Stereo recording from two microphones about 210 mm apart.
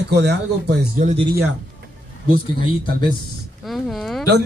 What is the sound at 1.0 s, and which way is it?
Speech, 35° right (ahead or behind).